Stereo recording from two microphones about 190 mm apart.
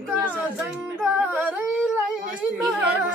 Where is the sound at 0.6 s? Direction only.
5° right (ahead or behind).